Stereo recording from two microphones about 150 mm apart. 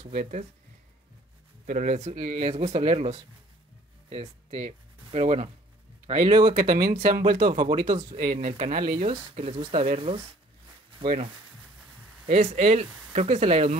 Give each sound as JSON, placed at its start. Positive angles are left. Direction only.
{"t": 0.1, "sound": "speech", "side_deg": -60}
{"t": 1.7, "sound": "speech", "side_deg": -50}
{"t": 6.5, "sound": "speech", "side_deg": -75}
{"t": 7.4, "sound": "speech", "side_deg": -35}
{"t": 8.2, "sound": "speech", "side_deg": -70}
{"t": 8.9, "sound": "speech", "side_deg": -35}
{"t": 12.3, "sound": "speech", "side_deg": -45}